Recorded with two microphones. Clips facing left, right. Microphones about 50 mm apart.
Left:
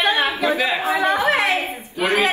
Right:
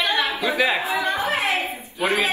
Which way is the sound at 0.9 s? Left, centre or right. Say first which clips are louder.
Left 5 dB; left.